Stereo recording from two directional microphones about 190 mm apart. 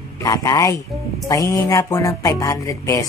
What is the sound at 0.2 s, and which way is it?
Speech, 15° left (ahead or behind).